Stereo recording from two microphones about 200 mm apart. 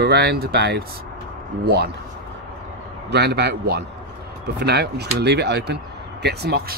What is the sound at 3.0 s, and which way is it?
Speech, 55° right (ahead or behind).